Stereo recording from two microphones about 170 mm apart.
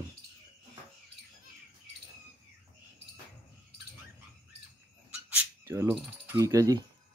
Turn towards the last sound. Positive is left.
turn(degrees=-20)  # may be behind; listen again after turning